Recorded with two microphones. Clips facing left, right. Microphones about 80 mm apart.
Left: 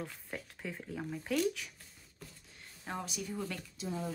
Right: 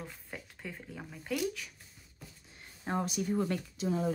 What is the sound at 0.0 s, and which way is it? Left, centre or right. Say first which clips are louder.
Speech: left 2 dB; centre.